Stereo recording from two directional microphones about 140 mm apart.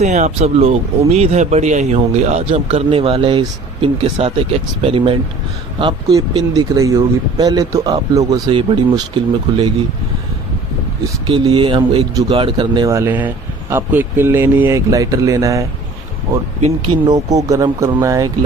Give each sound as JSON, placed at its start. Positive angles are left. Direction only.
{"t": 0.0, "sound": "speech", "side_deg": -55}
{"t": 6.5, "sound": "speech", "side_deg": -30}
{"t": 11.2, "sound": "speech", "side_deg": -35}
{"t": 12.8, "sound": "speech", "side_deg": -20}
{"t": 16.9, "sound": "speech", "side_deg": -30}